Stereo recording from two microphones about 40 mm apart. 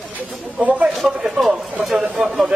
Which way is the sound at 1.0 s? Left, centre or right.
Centre.